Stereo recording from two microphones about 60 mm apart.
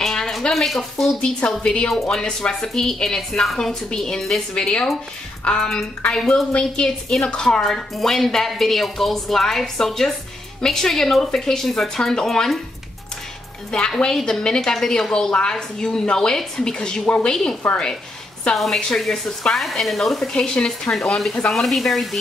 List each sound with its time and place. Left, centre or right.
0.0 s a woman's voice: centre
13.7 s a woman's voice: centre
20.3 s a woman's voice: centre